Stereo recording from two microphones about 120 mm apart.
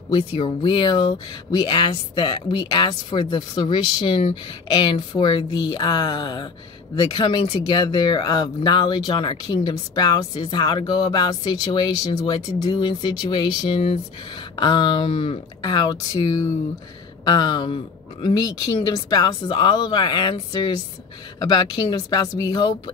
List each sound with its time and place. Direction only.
0.1 s speech: 40° left (ahead or behind)
15.6 s speech: 35° left (ahead or behind)